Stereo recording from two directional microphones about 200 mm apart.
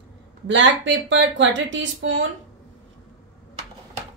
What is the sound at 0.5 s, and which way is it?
Speech, 65° right (ahead or behind).